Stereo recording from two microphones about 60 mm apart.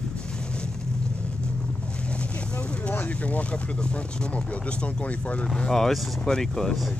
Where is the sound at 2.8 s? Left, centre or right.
Left.